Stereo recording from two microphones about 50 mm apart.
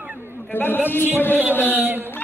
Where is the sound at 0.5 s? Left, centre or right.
Left.